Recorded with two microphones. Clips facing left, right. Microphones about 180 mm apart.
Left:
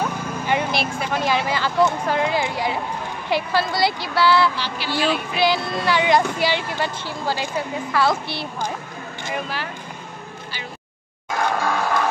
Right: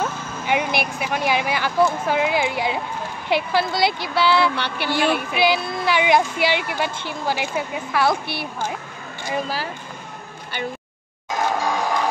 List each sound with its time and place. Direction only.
0.5 s vehicle: 15° right (ahead or behind)
0.9 s speech: 10° right (ahead or behind)
4.6 s speech: 60° right (ahead or behind)
5.9 s speech: 15° right (ahead or behind)
8.4 s speech: 15° left (ahead or behind)
11.2 s music: 20° right (ahead or behind)